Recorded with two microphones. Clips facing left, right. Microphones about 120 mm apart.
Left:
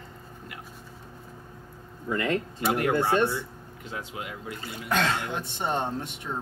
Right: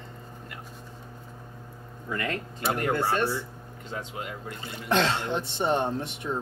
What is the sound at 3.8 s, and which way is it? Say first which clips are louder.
Speech: right 1 dB; 5° left (ahead or behind).